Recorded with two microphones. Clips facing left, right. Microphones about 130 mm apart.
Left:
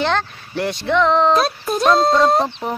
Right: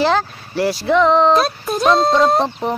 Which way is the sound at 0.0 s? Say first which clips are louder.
Right 3 dB; 5° right (ahead or behind).